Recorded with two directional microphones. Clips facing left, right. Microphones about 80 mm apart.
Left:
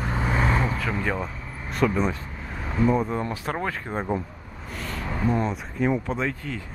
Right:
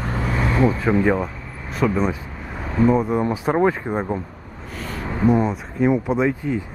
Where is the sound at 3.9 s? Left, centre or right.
Centre.